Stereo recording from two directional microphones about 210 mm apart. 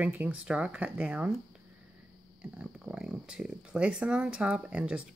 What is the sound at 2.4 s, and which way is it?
Speech, 5° right (ahead or behind).